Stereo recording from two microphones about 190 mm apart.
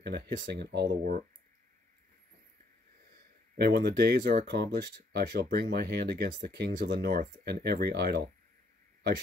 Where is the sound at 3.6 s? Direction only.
55° right (ahead or behind).